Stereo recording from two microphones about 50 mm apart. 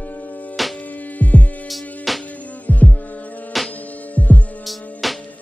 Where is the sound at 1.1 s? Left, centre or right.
Left.